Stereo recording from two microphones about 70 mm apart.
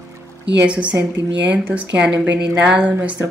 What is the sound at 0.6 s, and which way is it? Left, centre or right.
Speech, centre.